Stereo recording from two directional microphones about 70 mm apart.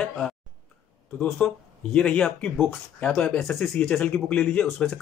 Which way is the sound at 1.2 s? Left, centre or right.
Centre.